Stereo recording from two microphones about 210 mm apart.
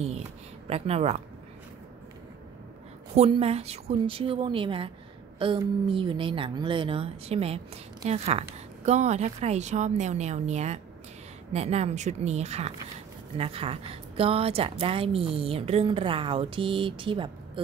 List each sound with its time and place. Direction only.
0.7 s speech: 30° right (ahead or behind)
3.2 s speech: 25° right (ahead or behind)